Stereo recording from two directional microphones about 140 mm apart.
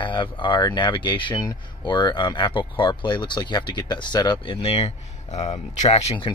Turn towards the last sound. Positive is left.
turn(degrees=45)  # may be behind; listen again after turning